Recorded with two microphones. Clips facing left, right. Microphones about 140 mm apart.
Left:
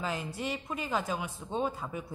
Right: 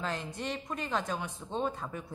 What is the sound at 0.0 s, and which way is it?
A woman's voice, 5° left (ahead or behind).